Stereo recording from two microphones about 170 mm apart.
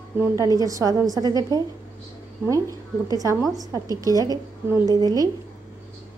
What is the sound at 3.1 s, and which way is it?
A woman's voice, 20° right (ahead or behind).